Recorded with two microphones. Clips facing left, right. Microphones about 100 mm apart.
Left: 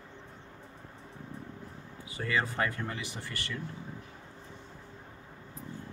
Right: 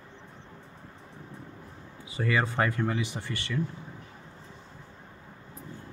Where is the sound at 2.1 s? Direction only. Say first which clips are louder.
Right 4 dB; 25° right (ahead or behind).